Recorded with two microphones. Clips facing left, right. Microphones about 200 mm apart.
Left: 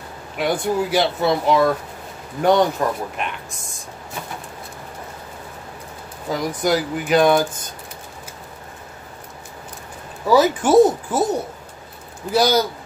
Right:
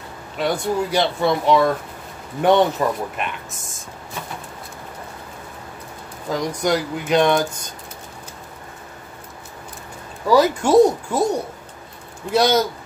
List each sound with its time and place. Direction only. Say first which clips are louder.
0.4 s speech: left 1 dB; 10° left (ahead or behind)
6.2 s speech: even; 5° left (ahead or behind)
10.2 s speech: even; centre (ahead or behind)